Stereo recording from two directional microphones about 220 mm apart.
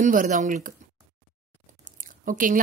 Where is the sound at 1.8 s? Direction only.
35° right (ahead or behind).